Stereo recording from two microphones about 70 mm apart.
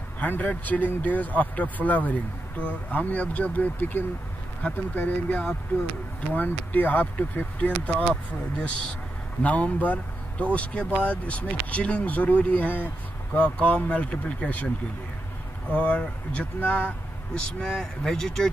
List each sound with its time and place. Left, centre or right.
0.2 s speech: left
15.7 s speech: centre